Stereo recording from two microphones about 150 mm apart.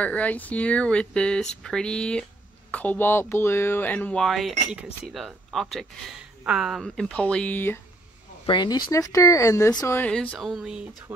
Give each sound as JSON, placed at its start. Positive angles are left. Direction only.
{"t": 0.0, "sound": "speech", "side_deg": 10}
{"t": 8.5, "sound": "speech", "side_deg": 30}
{"t": 10.1, "sound": "speech", "side_deg": 5}